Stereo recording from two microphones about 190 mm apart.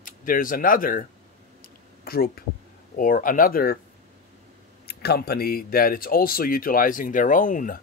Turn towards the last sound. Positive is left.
turn(degrees=45)  # may be behind; listen again after turning